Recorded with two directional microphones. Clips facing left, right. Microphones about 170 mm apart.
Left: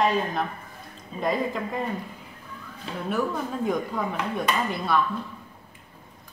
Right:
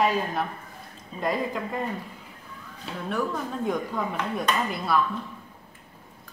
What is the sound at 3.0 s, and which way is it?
Speech, 5° left (ahead or behind).